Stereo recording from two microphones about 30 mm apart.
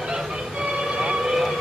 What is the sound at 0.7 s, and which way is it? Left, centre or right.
Vehicle, right.